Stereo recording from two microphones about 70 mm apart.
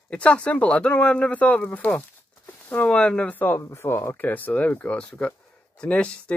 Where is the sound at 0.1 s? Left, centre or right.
Centre.